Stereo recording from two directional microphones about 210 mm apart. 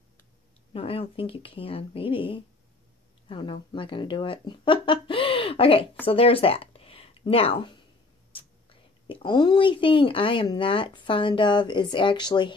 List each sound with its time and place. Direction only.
0.7 s speech: 25° left (ahead or behind)